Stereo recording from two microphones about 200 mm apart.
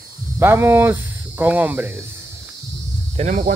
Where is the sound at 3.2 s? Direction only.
35° right (ahead or behind).